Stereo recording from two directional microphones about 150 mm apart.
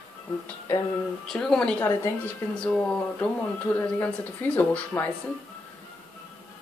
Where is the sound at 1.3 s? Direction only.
5° left (ahead or behind).